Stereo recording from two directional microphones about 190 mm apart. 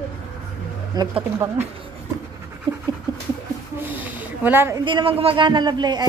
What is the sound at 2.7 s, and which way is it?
Pant, 25° right (ahead or behind).